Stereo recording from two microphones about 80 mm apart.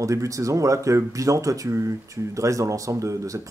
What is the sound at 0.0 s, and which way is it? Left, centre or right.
Speech, right.